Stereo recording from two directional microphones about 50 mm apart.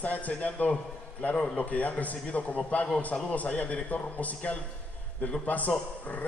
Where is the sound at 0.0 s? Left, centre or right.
Left.